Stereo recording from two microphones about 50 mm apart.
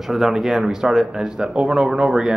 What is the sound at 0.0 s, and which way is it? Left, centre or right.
Speech, centre.